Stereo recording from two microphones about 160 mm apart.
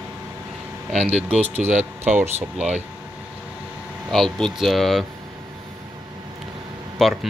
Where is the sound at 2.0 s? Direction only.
15° right (ahead or behind).